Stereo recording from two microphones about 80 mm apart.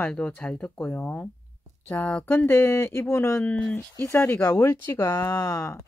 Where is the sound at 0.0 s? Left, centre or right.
Centre.